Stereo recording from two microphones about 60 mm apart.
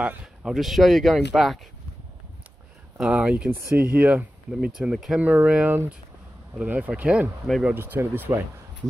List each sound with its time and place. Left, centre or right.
0.5 s speech: centre
3.0 s speech: centre
4.5 s speech: centre
5.2 s speech: right
7.7 s speech: right